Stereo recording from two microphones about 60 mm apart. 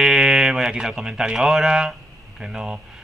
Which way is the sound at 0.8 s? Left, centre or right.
Centre.